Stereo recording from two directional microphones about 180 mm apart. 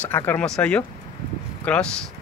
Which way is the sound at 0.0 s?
10° left (ahead or behind).